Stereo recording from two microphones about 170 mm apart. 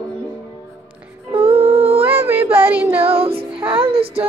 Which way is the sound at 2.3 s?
10° right (ahead or behind).